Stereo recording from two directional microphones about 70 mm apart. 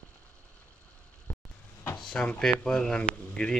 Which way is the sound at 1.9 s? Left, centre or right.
Centre.